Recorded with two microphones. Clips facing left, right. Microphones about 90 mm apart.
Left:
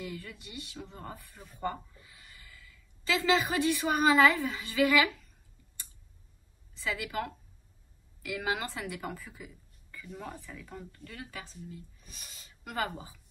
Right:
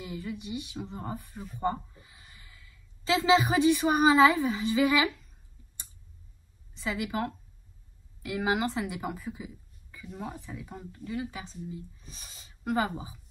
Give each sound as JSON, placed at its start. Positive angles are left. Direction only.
{"t": 0.0, "sound": "a woman's voice", "side_deg": -20}
{"t": 6.8, "sound": "speech", "side_deg": -20}